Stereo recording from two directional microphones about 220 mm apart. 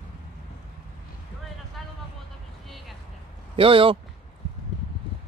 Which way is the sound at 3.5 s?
25° right (ahead or behind).